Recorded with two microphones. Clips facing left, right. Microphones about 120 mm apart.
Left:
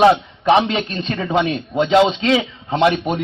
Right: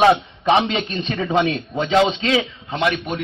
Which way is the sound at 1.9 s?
15° left (ahead or behind).